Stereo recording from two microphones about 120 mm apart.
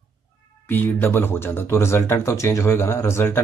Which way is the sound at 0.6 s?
15° left (ahead or behind).